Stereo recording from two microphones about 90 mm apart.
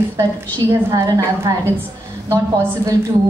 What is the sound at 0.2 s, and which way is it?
Speech, 35° right (ahead or behind).